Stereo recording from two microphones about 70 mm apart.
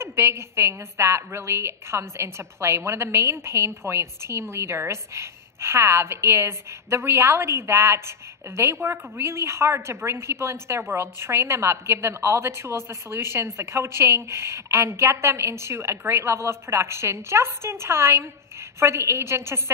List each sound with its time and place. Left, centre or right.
0.0 s a woman's voice: right